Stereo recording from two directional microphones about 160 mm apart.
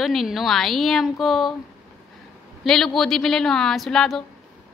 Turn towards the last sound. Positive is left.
turn(degrees=0)  # may be behind; listen again after turning